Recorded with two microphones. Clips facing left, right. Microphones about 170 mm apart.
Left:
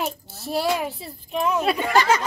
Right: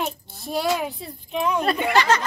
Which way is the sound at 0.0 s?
Centre (ahead or behind).